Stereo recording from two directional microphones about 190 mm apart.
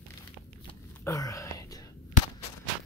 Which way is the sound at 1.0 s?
15° left (ahead or behind).